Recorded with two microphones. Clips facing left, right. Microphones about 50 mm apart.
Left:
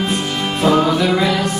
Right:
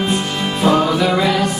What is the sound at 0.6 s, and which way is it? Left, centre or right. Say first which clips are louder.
Music: even; centre.